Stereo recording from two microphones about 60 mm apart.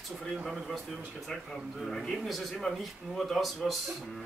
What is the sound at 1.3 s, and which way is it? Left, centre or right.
Speech, centre.